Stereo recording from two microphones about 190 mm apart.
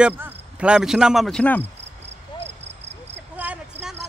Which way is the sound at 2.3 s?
25° left (ahead or behind).